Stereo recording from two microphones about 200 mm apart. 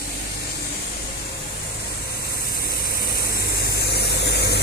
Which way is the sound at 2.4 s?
50° left (ahead or behind).